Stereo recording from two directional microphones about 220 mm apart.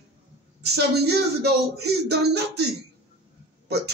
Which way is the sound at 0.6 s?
45° right (ahead or behind).